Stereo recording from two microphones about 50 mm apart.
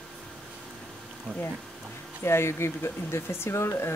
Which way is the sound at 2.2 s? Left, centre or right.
Left.